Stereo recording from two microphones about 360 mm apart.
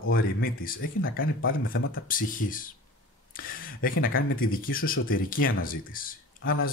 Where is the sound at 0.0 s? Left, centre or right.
Left.